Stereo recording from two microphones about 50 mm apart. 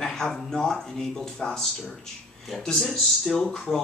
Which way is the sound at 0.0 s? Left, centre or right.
Centre.